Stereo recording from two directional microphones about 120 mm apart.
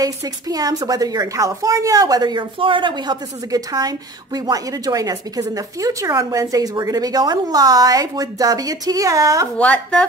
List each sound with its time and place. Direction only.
0.0 s a woman's voice: 30° right (ahead or behind)
9.6 s a woman's voice: 10° left (ahead or behind)